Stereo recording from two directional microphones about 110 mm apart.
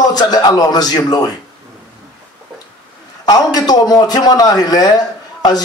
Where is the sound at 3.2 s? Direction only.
40° left (ahead or behind).